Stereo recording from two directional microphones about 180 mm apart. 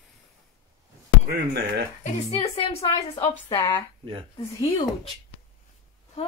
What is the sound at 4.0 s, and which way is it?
Speech, 30° right (ahead or behind).